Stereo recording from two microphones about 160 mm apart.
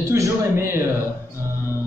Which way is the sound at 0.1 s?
15° right (ahead or behind).